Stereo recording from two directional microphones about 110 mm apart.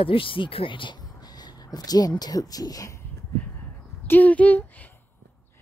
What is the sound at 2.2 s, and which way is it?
Speech, 35° left (ahead or behind).